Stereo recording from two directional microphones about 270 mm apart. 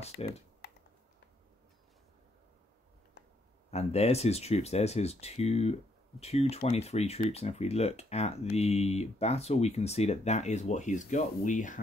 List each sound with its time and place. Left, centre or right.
0.2 s speech: left
3.7 s speech: left